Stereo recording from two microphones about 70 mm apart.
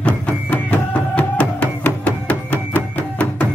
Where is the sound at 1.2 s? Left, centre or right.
Left.